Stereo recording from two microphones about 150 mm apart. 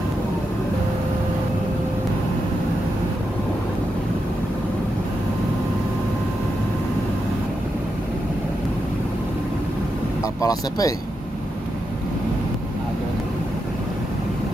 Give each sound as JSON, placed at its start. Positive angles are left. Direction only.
{"t": 10.4, "sound": "speech", "side_deg": 25}